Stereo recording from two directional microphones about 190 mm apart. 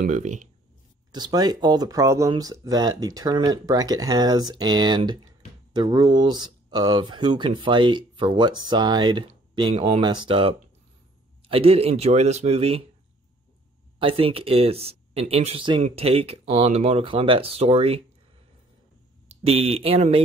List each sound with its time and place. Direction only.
0.0 s speech: 40° right (ahead or behind)
1.1 s speech: 20° right (ahead or behind)
13.9 s speech: 30° right (ahead or behind)
19.4 s speech: 30° right (ahead or behind)